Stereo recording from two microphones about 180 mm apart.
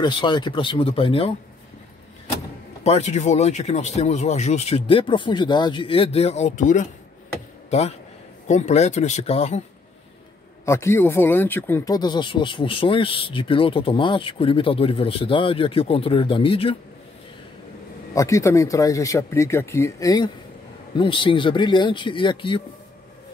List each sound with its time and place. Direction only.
0.0 s speech: 25° left (ahead or behind)
2.8 s speech: 40° left (ahead or behind)
8.5 s speech: 40° left (ahead or behind)
10.6 s speech: 15° left (ahead or behind)
18.1 s speech: 15° left (ahead or behind)